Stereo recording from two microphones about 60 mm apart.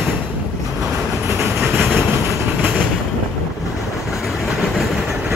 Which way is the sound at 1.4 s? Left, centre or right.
Right.